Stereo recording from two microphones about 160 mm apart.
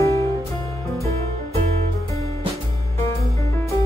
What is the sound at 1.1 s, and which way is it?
Music, 40° right (ahead or behind).